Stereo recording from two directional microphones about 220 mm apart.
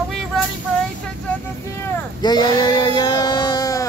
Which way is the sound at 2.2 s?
20° left (ahead or behind).